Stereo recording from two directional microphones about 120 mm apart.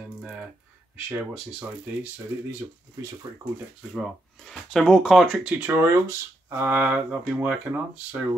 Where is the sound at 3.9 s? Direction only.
Centre (ahead or behind).